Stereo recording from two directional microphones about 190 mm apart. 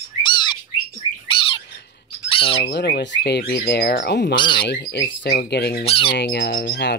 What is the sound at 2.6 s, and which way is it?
Speech, 60° left (ahead or behind).